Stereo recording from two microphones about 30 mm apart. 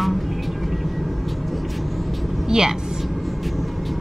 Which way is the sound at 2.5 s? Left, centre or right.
Centre.